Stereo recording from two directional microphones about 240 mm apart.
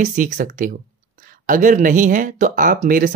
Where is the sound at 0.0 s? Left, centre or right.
Right.